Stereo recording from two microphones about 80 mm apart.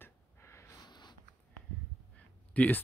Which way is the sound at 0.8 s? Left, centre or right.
Left.